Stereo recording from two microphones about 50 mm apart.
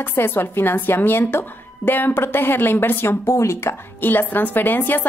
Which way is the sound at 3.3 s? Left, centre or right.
Left.